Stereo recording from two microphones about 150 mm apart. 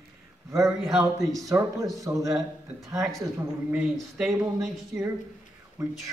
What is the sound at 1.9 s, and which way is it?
Speech, 20° right (ahead or behind).